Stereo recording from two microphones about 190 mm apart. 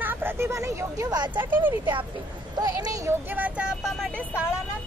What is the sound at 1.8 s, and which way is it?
Speech, 25° right (ahead or behind).